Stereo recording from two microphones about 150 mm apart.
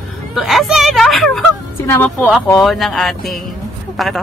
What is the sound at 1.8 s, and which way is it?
Speech, 15° left (ahead or behind).